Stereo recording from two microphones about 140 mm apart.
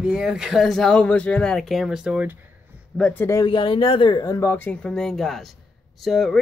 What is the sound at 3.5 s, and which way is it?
Speech, 35° left (ahead or behind).